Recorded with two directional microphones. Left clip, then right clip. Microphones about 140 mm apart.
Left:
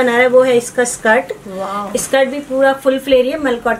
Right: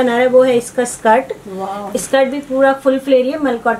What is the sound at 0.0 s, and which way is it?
Speech, 5° left (ahead or behind).